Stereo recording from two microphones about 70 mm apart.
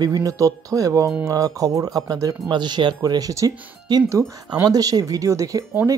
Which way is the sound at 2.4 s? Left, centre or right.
Right.